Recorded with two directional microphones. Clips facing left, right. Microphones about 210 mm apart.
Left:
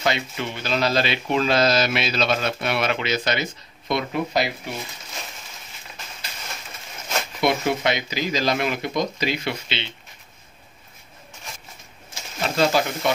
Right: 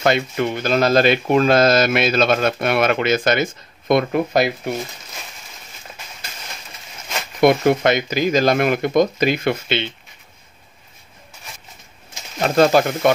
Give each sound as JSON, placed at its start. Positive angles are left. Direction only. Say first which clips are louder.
{"t": 0.0, "sound": "speech", "louder": "right 7 dB", "side_deg": -50}
{"t": 7.3, "sound": "speech", "louder": "right 8 dB", "side_deg": -50}
{"t": 12.4, "sound": "speech", "louder": "right 6 dB", "side_deg": -50}